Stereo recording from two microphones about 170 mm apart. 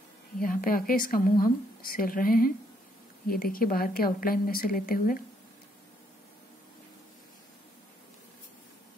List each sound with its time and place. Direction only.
0.4 s a woman's voice: 55° left (ahead or behind)